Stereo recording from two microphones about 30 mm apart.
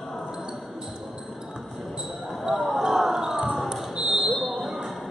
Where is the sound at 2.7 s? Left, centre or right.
Centre.